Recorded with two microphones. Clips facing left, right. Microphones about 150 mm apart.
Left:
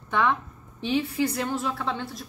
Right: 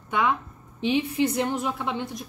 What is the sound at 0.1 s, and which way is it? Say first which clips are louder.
A woman's voice: even; 10° right (ahead or behind).